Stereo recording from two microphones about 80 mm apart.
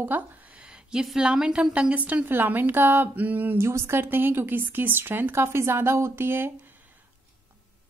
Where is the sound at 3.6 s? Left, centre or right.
Right.